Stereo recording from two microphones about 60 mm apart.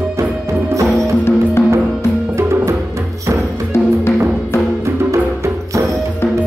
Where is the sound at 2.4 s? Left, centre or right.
Right.